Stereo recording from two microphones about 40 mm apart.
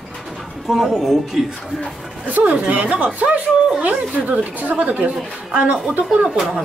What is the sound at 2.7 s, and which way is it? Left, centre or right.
Speech, right.